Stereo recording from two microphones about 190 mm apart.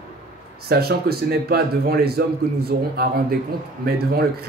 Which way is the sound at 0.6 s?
55° right (ahead or behind).